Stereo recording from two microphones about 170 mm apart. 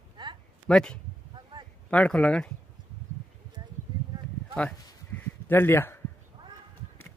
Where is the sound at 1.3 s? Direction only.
25° right (ahead or behind).